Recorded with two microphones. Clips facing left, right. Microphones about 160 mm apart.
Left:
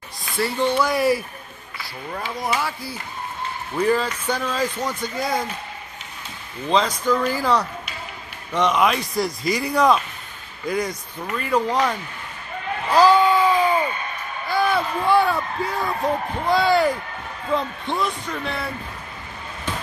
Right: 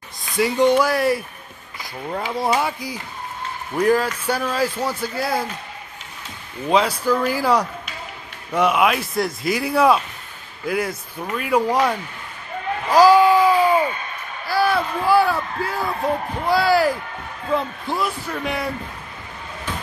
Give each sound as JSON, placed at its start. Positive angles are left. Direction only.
{"t": 0.2, "sound": "speech", "side_deg": -20}
{"t": 0.8, "sound": "speech", "side_deg": 0}
{"t": 1.8, "sound": "speech", "side_deg": -25}
{"t": 3.7, "sound": "speech", "side_deg": -10}
{"t": 6.7, "sound": "speech", "side_deg": -10}
{"t": 12.9, "sound": "a sound", "side_deg": -10}
{"t": 16.4, "sound": "speech", "side_deg": -5}